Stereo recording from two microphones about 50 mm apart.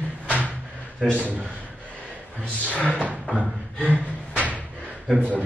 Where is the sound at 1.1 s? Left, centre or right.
Right.